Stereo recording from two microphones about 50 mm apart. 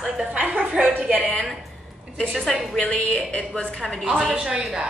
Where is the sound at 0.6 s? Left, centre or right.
Right.